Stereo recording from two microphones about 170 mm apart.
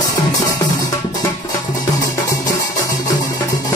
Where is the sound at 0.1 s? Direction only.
20° left (ahead or behind).